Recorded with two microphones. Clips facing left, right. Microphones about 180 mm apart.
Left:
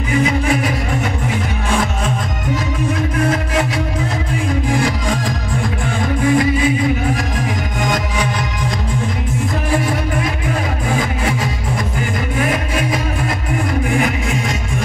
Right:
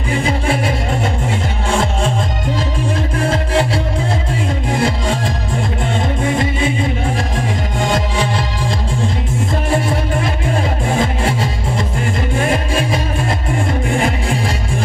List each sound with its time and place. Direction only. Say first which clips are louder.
0.1 s music: left 2 dB; 30° right (ahead or behind)
3.2 s music: right 2 dB; 30° right (ahead or behind)
9.7 s music: right 1 dB; 25° right (ahead or behind)